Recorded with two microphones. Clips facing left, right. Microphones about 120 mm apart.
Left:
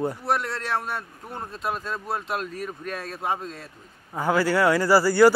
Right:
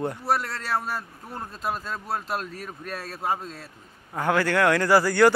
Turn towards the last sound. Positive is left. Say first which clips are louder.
# left 2 dB
turn(degrees=10)  # may be behind; listen again after turning